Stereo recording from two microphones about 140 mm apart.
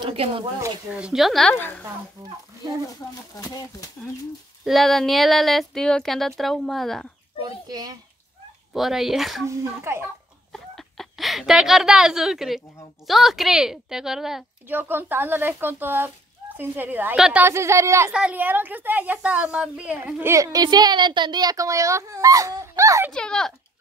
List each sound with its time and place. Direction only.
0.0 s a woman's voice: 40° right (ahead or behind)
0.8 s speech: 10° right (ahead or behind)
2.9 s speech: 25° left (ahead or behind)
4.6 s speech: centre (ahead or behind)
7.4 s a sound: 25° right (ahead or behind)
8.7 s speech: centre (ahead or behind)
9.5 s a woman's voice: 20° right (ahead or behind)
10.5 s speech: centre (ahead or behind)
14.7 s a woman's voice: 15° right (ahead or behind)
18.1 s a woman's voice: 10° right (ahead or behind)
23.1 s speech: 5° left (ahead or behind)